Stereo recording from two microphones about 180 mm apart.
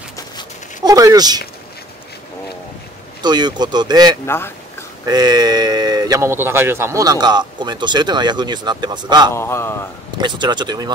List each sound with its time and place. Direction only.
0.8 s speech: 20° right (ahead or behind)
3.2 s speech: 25° right (ahead or behind)
4.3 s a sound: 15° left (ahead or behind)
5.0 s speech: 20° right (ahead or behind)
9.3 s a man's voice: 15° left (ahead or behind)
10.1 s speech: 25° right (ahead or behind)